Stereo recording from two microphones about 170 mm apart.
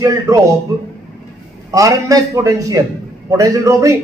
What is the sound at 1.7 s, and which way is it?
A man's voice, 20° right (ahead or behind).